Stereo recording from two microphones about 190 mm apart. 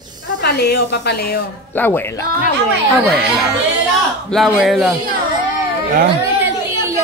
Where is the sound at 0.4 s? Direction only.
60° left (ahead or behind).